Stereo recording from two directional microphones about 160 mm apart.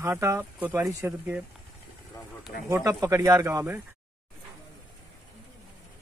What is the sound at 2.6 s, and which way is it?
Speech, 20° right (ahead or behind).